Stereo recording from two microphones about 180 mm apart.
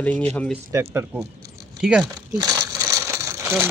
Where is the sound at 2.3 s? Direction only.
20° right (ahead or behind).